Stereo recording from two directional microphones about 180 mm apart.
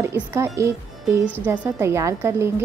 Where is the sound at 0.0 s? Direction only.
15° right (ahead or behind).